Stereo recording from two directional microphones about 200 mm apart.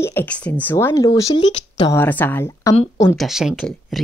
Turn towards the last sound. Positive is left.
turn(degrees=0)  # may be behind; listen again after turning